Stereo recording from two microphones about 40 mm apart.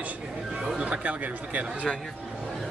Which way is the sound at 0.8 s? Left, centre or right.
Right.